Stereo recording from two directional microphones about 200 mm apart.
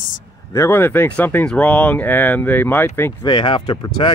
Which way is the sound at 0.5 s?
10° left (ahead or behind).